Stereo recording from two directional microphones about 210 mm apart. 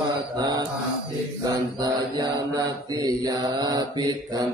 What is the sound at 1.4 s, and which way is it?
Mantra, 15° right (ahead or behind).